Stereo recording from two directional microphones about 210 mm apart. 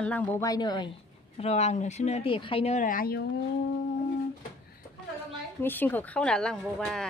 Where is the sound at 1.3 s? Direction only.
30° left (ahead or behind).